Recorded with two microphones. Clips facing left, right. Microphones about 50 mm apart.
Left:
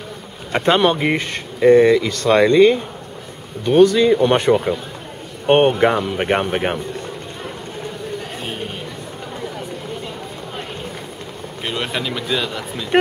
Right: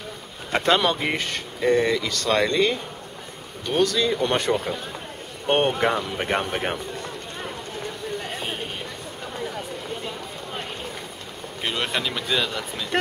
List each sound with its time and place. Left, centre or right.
0.5 s speech: centre
11.6 s speech: centre